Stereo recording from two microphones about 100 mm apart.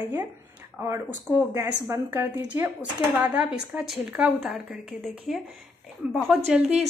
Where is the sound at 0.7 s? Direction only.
25° right (ahead or behind); by 5.1 s 10° right (ahead or behind).